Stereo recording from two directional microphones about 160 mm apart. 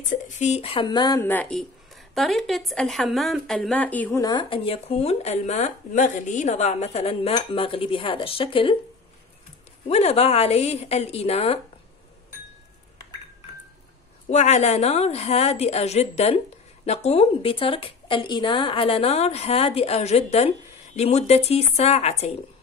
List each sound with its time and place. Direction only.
0.1 s a woman's voice: 50° left (ahead or behind); by 1.2 s 25° left (ahead or behind)
1.2 s a woman's voice: 10° left (ahead or behind)
4.2 s a woman's voice: 25° left (ahead or behind)
9.8 s a woman's voice: 40° left (ahead or behind)
14.3 s a woman's voice: 45° left (ahead or behind)